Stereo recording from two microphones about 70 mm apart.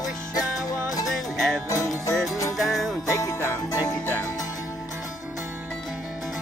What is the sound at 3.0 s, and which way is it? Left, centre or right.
Music, left.